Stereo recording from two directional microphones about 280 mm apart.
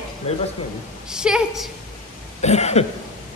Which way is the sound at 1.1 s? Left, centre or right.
Centre.